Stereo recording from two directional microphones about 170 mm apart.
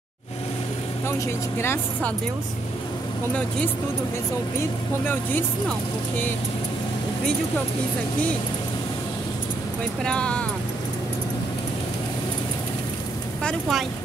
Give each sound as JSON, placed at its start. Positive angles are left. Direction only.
{"t": 1.6, "sound": "speech", "side_deg": 15}
{"t": 5.0, "sound": "speech", "side_deg": 10}
{"t": 10.0, "sound": "speech", "side_deg": 5}
{"t": 13.4, "sound": "speech", "side_deg": 0}